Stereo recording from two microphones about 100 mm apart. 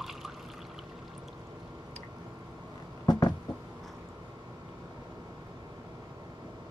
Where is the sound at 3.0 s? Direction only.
45° left (ahead or behind).